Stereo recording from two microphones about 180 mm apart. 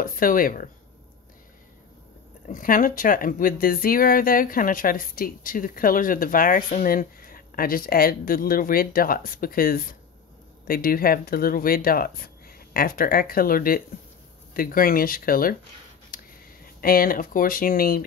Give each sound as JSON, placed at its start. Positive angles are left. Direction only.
{"t": 0.0, "sound": "speech", "side_deg": 50}
{"t": 2.4, "sound": "speech", "side_deg": 50}
{"t": 16.1, "sound": "a sound", "side_deg": 55}
{"t": 16.8, "sound": "speech", "side_deg": 55}